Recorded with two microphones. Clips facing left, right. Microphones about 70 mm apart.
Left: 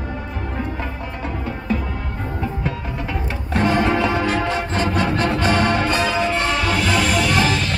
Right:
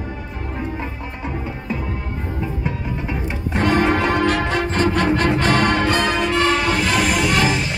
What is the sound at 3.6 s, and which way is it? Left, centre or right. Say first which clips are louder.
Music: right 1 dB; right.